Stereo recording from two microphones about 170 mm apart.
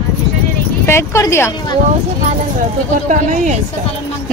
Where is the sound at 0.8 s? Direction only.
15° left (ahead or behind).